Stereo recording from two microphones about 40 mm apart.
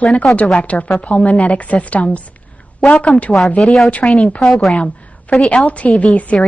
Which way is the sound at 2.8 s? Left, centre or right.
Left.